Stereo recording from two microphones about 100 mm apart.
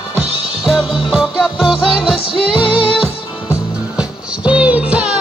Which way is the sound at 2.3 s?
60° left (ahead or behind).